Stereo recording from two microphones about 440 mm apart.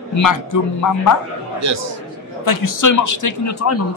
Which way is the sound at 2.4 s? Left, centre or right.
Left.